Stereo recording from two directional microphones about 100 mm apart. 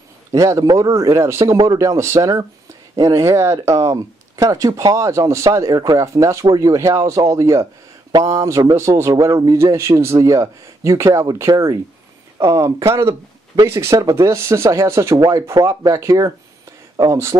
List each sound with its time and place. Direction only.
0.3 s speech: 35° right (ahead or behind)